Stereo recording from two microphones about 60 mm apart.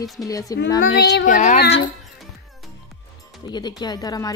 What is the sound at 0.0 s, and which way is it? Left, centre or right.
Speech, left.